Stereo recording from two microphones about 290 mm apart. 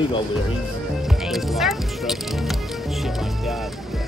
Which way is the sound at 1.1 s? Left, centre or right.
Centre.